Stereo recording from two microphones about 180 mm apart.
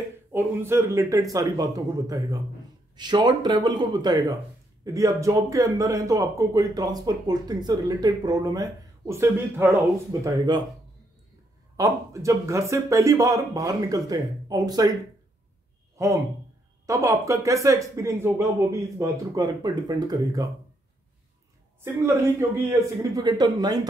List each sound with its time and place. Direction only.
0.3 s speech: 15° right (ahead or behind)
11.7 s speech: 15° right (ahead or behind)
16.8 s speech: 15° right (ahead or behind)
22.0 s speech: 15° right (ahead or behind)